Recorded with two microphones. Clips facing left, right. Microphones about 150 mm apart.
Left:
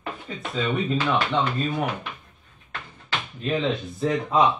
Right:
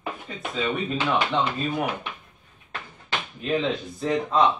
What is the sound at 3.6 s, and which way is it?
Speech, centre (ahead or behind).